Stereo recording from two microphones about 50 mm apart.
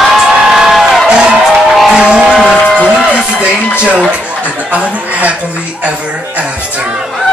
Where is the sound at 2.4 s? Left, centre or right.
Left.